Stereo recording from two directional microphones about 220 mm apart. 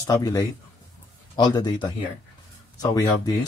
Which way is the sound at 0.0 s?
15° left (ahead or behind).